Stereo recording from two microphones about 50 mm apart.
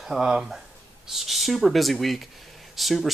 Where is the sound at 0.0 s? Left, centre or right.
Centre.